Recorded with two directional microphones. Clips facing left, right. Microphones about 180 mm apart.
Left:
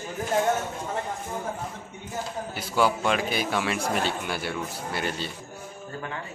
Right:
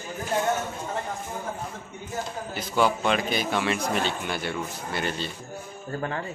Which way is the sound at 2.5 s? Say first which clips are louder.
Right 1 dB; 5° left (ahead or behind).